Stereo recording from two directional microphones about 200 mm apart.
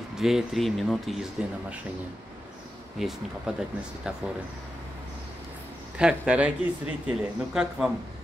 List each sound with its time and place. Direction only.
0.2 s speech: centre (ahead or behind)
3.0 s speech: centre (ahead or behind)
5.9 s speech: 5° right (ahead or behind)